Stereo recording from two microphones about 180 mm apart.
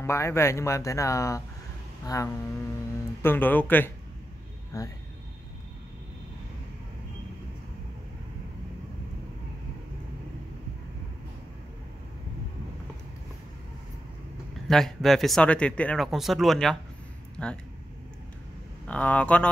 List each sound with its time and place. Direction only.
0.0 s speech: 15° left (ahead or behind)
14.7 s speech: centre (ahead or behind)
18.9 s speech: 5° left (ahead or behind)